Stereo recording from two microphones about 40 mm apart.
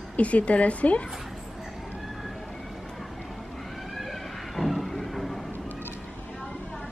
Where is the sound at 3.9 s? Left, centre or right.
Centre.